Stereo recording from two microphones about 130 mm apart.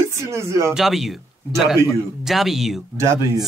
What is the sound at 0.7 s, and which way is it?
Speech, centre (ahead or behind).